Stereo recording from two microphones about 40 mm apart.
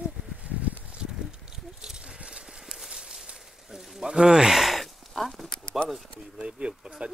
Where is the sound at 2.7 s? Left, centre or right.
Centre.